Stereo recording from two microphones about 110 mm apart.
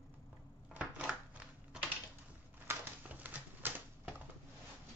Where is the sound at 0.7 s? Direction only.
10° right (ahead or behind).